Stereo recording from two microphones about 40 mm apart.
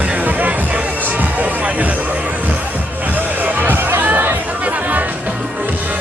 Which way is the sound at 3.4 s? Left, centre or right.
Right.